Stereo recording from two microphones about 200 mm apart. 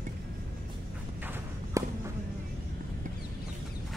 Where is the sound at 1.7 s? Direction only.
15° right (ahead or behind).